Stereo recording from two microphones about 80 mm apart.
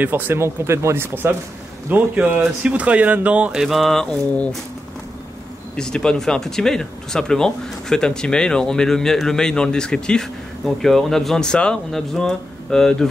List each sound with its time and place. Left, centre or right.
0.0 s speech: right; by 4.6 s centre
5.8 s speech: centre